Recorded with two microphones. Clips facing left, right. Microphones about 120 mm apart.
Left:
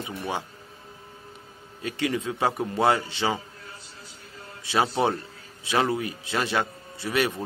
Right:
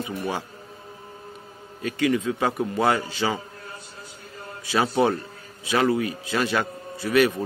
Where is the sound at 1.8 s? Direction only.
25° left (ahead or behind).